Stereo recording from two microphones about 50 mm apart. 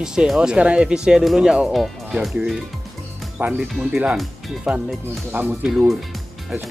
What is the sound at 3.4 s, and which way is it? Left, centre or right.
Music, right.